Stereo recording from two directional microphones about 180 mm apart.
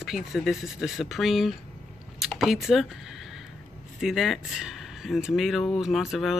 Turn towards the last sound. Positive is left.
turn(degrees=0)  # may be behind; listen again after turning